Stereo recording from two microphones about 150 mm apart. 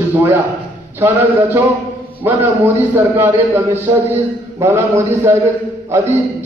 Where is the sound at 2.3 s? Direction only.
15° right (ahead or behind).